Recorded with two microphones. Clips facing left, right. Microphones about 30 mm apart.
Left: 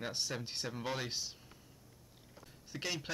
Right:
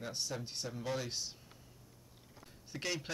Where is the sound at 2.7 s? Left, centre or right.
Centre.